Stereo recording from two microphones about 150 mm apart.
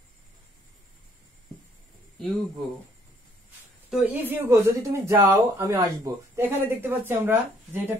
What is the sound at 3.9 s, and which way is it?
Speech, 10° right (ahead or behind).